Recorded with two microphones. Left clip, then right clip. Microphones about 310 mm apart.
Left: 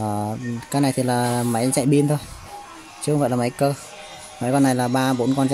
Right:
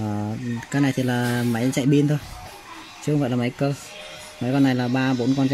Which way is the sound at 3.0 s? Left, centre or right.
Left.